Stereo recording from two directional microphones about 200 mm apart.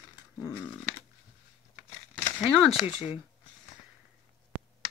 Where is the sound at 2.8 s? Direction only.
30° left (ahead or behind).